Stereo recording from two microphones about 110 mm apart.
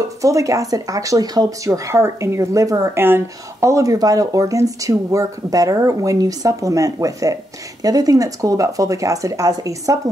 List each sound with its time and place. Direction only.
0.2 s speech: 30° right (ahead or behind)
3.0 s speech: 20° right (ahead or behind)